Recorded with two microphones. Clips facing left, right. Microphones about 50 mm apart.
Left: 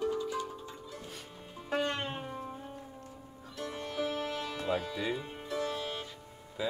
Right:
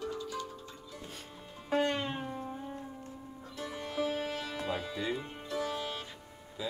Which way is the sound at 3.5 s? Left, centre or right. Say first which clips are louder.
Even; centre.